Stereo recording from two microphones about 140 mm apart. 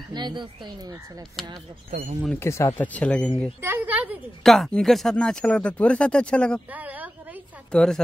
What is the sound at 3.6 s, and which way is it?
Speech, 15° right (ahead or behind).